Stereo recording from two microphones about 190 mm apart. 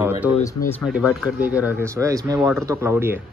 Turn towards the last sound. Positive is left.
turn(degrees=-10)  # may be behind; listen again after turning